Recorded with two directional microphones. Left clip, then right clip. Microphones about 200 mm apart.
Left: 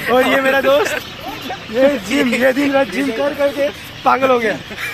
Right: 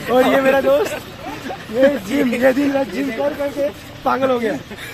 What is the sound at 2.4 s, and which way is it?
Speech, 25° left (ahead or behind).